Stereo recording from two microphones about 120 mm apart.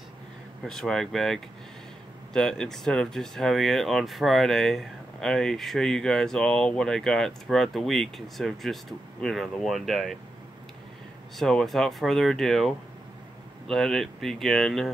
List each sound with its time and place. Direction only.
0.7 s speech: 5° left (ahead or behind)
11.3 s speech: 5° left (ahead or behind)